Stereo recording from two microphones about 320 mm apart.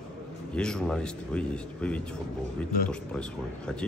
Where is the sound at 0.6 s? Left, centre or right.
Centre.